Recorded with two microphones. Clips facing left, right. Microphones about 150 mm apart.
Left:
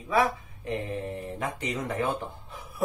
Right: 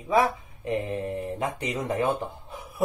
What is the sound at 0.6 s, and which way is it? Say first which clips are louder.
Speech: right 4 dB; 20° right (ahead or behind).